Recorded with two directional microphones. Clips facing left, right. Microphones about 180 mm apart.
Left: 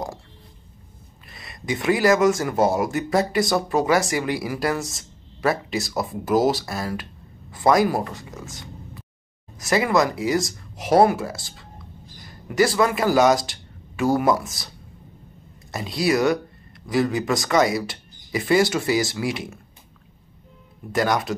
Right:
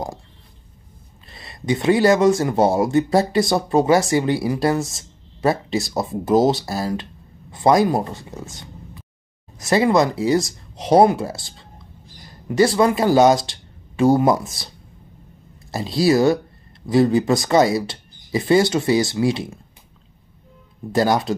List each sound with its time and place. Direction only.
1.3 s speech: 25° right (ahead or behind)
9.7 s speech: 25° right (ahead or behind)
15.7 s speech: 30° right (ahead or behind)
20.9 s speech: 30° right (ahead or behind)